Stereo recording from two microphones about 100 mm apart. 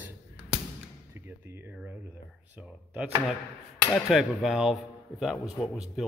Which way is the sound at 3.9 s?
Centre (ahead or behind).